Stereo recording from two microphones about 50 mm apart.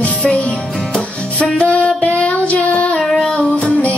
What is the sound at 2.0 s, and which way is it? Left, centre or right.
Child singing, left.